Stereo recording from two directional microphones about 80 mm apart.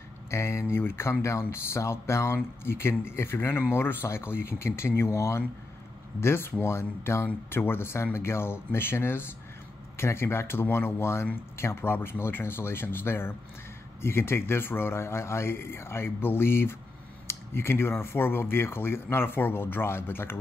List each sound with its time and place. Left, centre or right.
0.3 s speech: left